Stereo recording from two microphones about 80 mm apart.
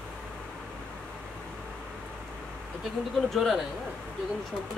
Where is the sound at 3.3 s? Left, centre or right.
Centre.